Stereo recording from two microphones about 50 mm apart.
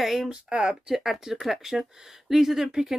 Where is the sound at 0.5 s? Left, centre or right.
Centre.